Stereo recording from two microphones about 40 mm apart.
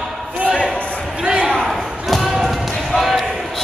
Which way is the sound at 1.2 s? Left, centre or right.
Right.